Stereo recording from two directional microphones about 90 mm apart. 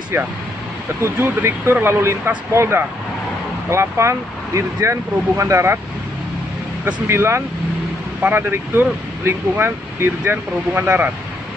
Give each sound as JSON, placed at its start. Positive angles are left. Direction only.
{"t": 1.0, "sound": "speech", "side_deg": -25}
{"t": 7.1, "sound": "speech", "side_deg": -30}